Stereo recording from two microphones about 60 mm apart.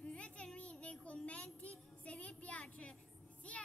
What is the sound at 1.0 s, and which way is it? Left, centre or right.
A child's voice, left.